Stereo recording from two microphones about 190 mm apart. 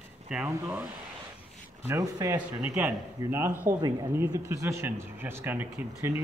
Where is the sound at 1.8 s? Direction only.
20° right (ahead or behind).